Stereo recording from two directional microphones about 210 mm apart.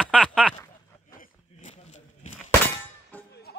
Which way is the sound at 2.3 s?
10° left (ahead or behind).